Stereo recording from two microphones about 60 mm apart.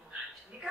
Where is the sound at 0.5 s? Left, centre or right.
Right.